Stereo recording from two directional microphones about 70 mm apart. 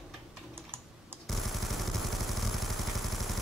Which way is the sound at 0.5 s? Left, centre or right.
Right.